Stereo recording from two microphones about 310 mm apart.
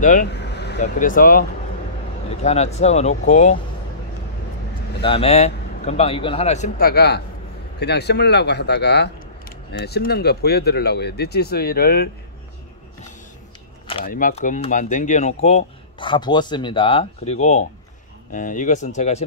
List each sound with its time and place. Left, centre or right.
0.0 s speech: left
5.0 s speech: centre
13.8 s speech: left